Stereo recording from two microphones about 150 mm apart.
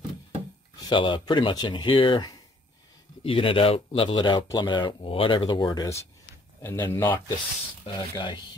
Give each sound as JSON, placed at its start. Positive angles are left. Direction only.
{"t": 0.7, "sound": "speech", "side_deg": 30}
{"t": 7.8, "sound": "speech", "side_deg": 30}